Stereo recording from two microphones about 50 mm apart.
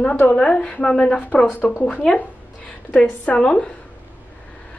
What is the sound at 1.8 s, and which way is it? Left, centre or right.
A woman's voice, left.